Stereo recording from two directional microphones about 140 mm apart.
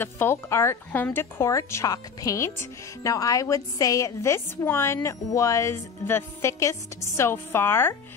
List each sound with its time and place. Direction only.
0.0 s a woman's voice: 15° left (ahead or behind)